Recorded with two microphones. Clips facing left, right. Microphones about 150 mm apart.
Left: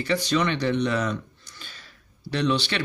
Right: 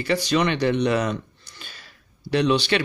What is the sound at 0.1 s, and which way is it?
Speech, 65° right (ahead or behind).